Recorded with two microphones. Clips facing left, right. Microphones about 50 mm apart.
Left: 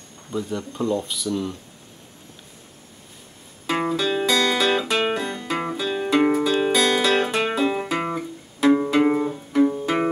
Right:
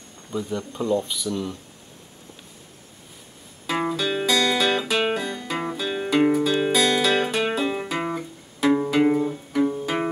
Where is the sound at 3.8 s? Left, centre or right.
Centre.